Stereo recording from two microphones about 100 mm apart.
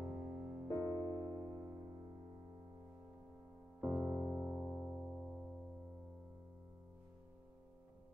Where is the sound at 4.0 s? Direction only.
5° right (ahead or behind).